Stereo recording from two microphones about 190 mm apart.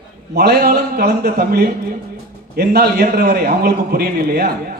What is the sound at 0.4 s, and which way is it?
A man's voice, 55° right (ahead or behind).